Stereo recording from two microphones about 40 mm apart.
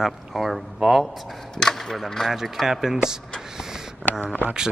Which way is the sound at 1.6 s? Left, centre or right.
Centre.